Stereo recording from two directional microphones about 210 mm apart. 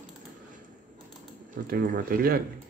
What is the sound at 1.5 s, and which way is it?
Speech, 40° right (ahead or behind).